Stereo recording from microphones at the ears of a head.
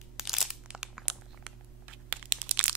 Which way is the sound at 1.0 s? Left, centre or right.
Right.